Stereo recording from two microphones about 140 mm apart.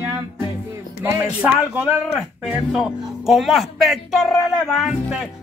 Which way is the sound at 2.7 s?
Centre (ahead or behind).